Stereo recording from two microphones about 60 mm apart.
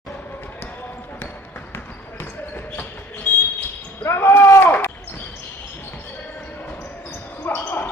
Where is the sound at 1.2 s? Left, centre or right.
Left.